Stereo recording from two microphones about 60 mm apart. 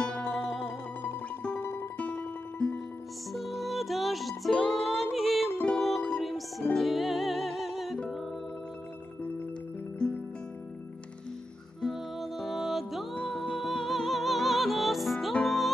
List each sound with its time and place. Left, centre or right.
0.0 s music: left
1.6 s music: left
2.0 s music: left
3.3 s music: centre
11.8 s music: centre